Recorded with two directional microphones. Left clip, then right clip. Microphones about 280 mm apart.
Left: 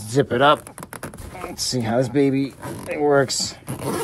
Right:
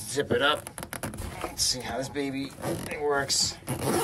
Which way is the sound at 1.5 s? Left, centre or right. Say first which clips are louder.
Left 8 dB; left.